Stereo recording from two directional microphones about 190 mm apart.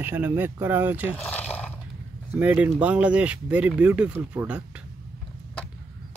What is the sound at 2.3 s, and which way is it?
Speech, 10° right (ahead or behind).